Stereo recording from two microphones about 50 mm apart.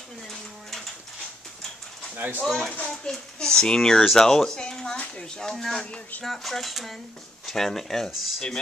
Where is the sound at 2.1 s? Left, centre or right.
Right.